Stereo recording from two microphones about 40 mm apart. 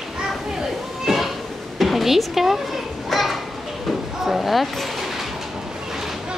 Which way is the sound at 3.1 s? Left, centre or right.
Centre.